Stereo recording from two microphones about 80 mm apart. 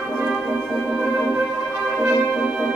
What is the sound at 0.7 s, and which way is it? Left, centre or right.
Music, centre.